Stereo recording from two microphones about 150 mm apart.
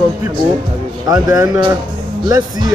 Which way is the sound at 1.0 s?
25° right (ahead or behind).